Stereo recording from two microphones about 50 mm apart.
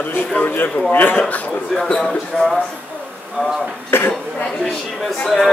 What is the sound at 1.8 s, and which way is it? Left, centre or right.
Speech, centre.